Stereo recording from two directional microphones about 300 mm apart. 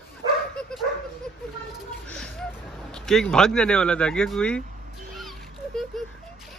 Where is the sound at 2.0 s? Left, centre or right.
Centre.